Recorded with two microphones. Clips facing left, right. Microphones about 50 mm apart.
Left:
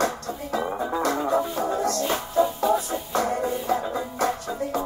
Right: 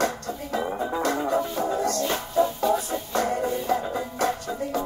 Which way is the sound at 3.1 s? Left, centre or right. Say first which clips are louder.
Even; left.